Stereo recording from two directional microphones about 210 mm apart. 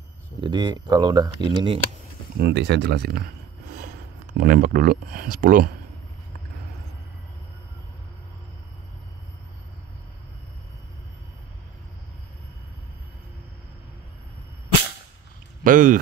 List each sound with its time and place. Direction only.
0.4 s speech: 20° right (ahead or behind)
2.3 s speech: 50° right (ahead or behind)
15.6 s speech: 40° right (ahead or behind)